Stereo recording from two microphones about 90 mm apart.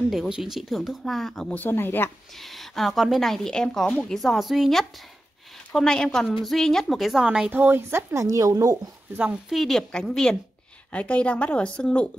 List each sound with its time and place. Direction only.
0.1 s a woman's voice: 5° right (ahead or behind)
1.5 s speech: 25° left (ahead or behind)
2.4 s a woman's voice: centre (ahead or behind); by 8.7 s 40° right (ahead or behind)
9.1 s a woman's voice: 15° right (ahead or behind)
9.5 s a woman's voice: centre (ahead or behind)